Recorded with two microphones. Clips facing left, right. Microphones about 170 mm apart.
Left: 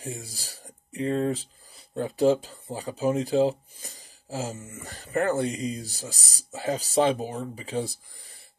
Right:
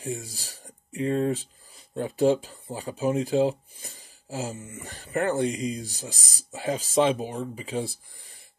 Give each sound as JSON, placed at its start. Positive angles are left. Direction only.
{"t": 0.0, "sound": "speech", "side_deg": 35}